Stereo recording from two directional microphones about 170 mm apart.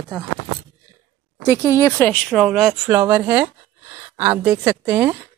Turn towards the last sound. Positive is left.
turn(degrees=-15)  # may be behind; listen again after turning